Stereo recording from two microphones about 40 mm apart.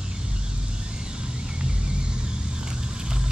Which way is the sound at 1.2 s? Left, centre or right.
Right.